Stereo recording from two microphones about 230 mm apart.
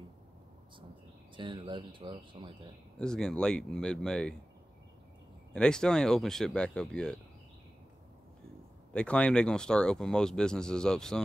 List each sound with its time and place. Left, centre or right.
1.3 s speech: right
3.0 s speech: centre
5.5 s speech: centre
8.9 s speech: centre